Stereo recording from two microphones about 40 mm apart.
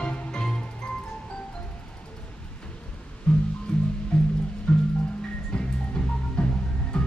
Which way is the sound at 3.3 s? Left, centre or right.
Left.